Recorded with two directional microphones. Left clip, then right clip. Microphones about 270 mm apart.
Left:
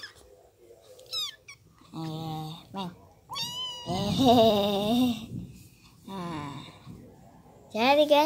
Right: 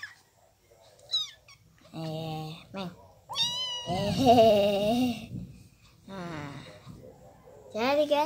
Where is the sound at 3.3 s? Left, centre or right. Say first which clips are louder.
Right 4 dB; right.